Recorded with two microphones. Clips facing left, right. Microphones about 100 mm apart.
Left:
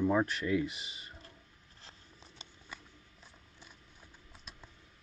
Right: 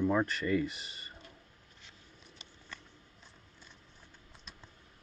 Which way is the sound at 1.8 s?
35° left (ahead or behind).